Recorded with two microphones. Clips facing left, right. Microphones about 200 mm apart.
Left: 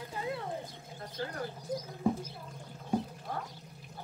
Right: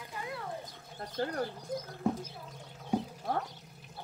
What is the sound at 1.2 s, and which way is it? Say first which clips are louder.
Speech: right 5 dB; 50° right (ahead or behind).